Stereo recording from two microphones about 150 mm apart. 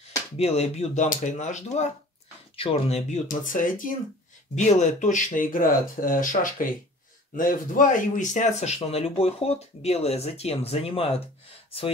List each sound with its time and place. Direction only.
0.4 s speech: 45° left (ahead or behind); by 3.9 s 65° left (ahead or behind)
4.6 s speech: 50° left (ahead or behind)